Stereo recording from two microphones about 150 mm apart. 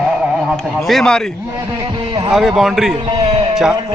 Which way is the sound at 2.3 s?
Centre (ahead or behind).